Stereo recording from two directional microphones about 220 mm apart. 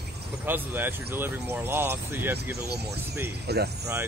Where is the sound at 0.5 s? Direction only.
10° right (ahead or behind).